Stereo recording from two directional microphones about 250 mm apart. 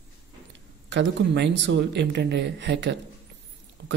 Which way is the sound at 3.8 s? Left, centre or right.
Right.